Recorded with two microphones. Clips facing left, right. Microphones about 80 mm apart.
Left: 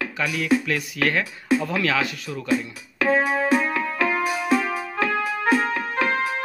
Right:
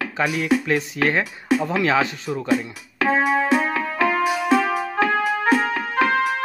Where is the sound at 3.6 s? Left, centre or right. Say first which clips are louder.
Right 2 dB; right.